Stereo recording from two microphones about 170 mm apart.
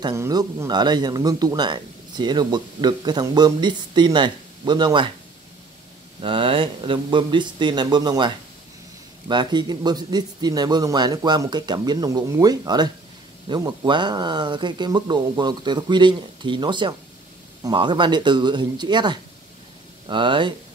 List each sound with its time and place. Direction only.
0.0 s a man's voice: 20° right (ahead or behind)
6.2 s a man's voice: 30° right (ahead or behind)
9.3 s a man's voice: 25° right (ahead or behind)